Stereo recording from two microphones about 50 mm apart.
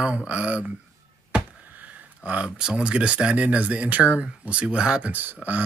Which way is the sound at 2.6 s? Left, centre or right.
Centre.